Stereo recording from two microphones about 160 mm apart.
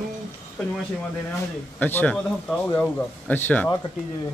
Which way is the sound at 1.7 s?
10° left (ahead or behind).